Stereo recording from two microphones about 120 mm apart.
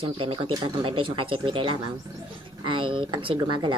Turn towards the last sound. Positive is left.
turn(degrees=-40)  # may be behind; listen again after turning